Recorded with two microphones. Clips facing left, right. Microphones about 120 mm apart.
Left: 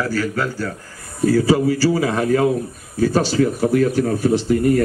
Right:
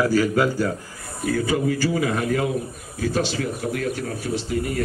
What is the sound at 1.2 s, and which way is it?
A man's voice, 35° left (ahead or behind).